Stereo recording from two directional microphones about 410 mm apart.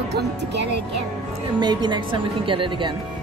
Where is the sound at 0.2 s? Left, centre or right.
Right.